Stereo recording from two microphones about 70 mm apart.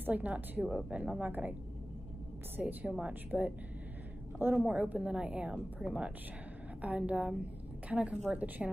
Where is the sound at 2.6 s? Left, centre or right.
Right.